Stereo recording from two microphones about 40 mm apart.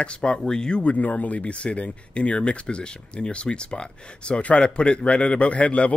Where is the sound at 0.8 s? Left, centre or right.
Left.